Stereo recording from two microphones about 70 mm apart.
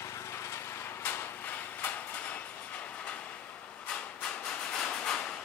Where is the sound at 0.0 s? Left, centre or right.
Left.